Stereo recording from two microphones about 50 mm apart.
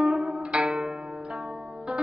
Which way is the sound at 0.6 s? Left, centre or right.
Right.